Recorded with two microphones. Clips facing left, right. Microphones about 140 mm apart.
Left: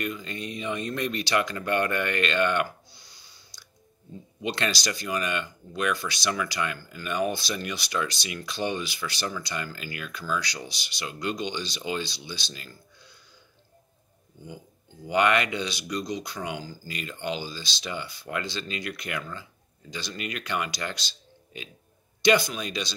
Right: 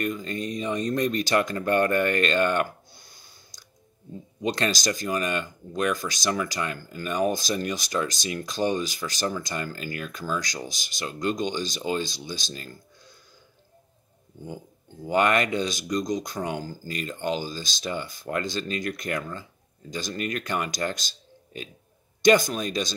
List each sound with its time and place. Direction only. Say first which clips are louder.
0.0 s speech: right 4 dB; 40° right (ahead or behind)
15.0 s speech: right 1 dB; 40° right (ahead or behind)